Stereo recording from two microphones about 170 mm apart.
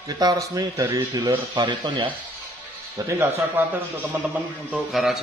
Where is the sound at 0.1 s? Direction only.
20° right (ahead or behind).